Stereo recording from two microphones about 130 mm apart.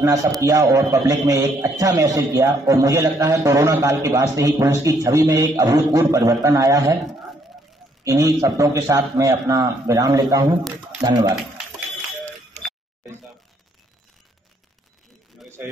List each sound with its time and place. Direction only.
0.0 s a man's voice: 25° right (ahead or behind)
8.0 s a man's voice: 25° right (ahead or behind)